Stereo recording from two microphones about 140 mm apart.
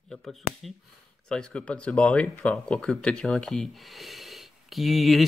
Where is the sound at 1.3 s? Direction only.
5° left (ahead or behind).